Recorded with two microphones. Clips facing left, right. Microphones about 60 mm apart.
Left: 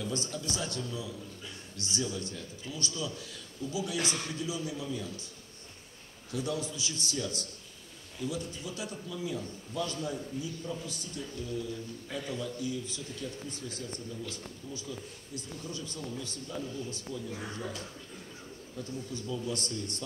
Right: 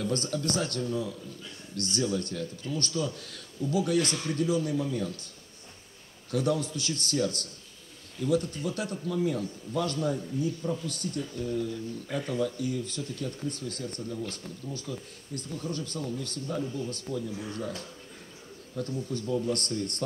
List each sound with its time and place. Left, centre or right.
0.0 s speech: right
6.3 s speech: right
18.8 s speech: right